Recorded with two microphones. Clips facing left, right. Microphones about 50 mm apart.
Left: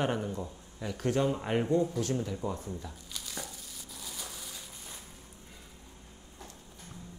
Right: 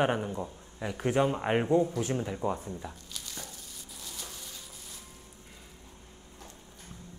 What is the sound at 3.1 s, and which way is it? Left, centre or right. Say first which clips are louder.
Crumpling: left 2 dB; centre.